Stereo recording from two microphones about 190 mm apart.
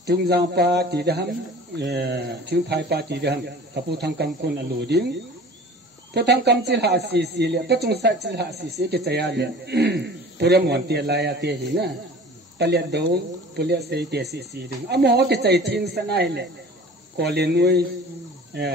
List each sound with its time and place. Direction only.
0.0 s speech: 60° right (ahead or behind)
6.1 s speech: 60° right (ahead or behind)